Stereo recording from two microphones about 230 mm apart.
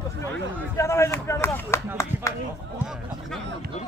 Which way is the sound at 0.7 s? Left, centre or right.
Centre.